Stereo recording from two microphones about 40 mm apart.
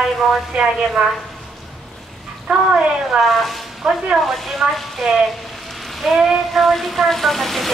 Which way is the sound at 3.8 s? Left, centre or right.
Centre.